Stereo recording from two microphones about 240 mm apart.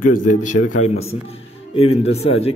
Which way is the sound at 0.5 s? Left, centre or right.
Left.